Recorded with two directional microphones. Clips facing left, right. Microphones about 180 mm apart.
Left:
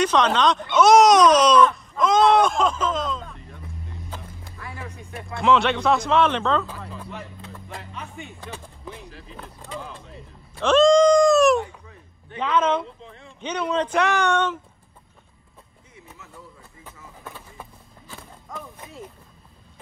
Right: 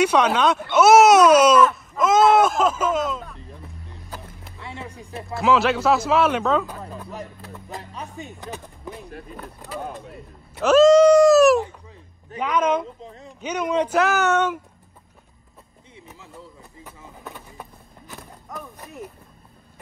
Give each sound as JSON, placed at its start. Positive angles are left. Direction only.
{"t": 0.0, "sound": "speech", "side_deg": -10}
{"t": 4.5, "sound": "music", "side_deg": -25}
{"t": 5.3, "sound": "speech", "side_deg": -5}
{"t": 6.8, "sound": "a sound", "side_deg": -40}
{"t": 7.7, "sound": "music", "side_deg": -35}
{"t": 9.0, "sound": "speech", "side_deg": -55}
{"t": 9.8, "sound": "mechanisms", "side_deg": -55}
{"t": 10.6, "sound": "speech", "side_deg": -5}
{"t": 11.6, "sound": "a sound", "side_deg": -30}
{"t": 12.4, "sound": "speech", "side_deg": -10}
{"t": 13.0, "sound": "speech", "side_deg": -40}
{"t": 13.4, "sound": "speech", "side_deg": -10}
{"t": 17.2, "sound": "a sound", "side_deg": -5}